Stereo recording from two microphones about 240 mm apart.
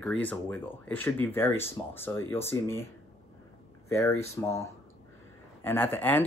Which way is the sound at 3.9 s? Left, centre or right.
Centre.